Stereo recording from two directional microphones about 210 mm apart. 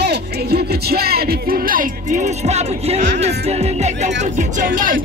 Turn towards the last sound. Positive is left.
turn(degrees=-40)  # may be behind; listen again after turning